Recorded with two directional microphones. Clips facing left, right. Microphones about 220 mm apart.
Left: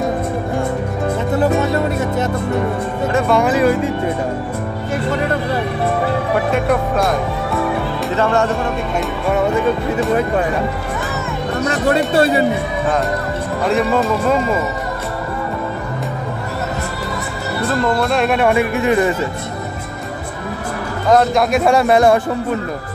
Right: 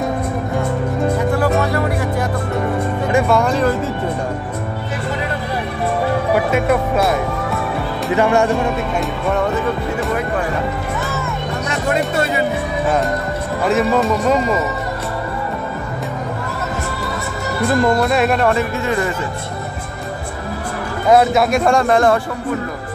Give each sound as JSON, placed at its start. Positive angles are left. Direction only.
{"t": 1.3, "sound": "music", "side_deg": 20}
{"t": 3.3, "sound": "music", "side_deg": 5}
{"t": 6.3, "sound": "a man's voice", "side_deg": -5}
{"t": 8.1, "sound": "speech", "side_deg": -15}
{"t": 11.7, "sound": "speech", "side_deg": 35}
{"t": 13.7, "sound": "a man's voice", "side_deg": 0}
{"t": 18.0, "sound": "a man's voice", "side_deg": -5}
{"t": 18.4, "sound": "speech", "side_deg": 15}
{"t": 21.1, "sound": "a man's voice", "side_deg": -5}